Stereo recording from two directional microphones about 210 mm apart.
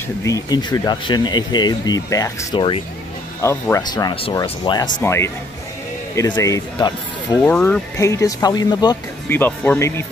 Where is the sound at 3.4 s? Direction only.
15° left (ahead or behind).